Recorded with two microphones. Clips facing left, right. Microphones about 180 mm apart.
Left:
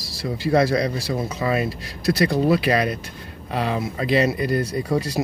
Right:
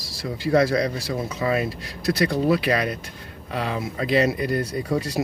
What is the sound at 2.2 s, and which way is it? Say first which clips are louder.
Speech: left 2 dB; 30° left (ahead or behind).